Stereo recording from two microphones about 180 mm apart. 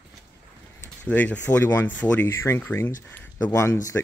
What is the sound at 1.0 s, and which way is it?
Speech, 10° left (ahead or behind).